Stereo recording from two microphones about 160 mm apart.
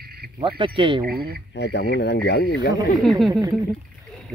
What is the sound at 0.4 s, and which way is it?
Speech, 30° right (ahead or behind).